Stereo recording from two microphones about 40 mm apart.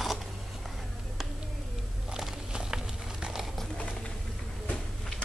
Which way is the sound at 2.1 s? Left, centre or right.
Centre.